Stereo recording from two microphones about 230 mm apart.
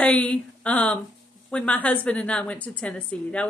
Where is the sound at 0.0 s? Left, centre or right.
Centre.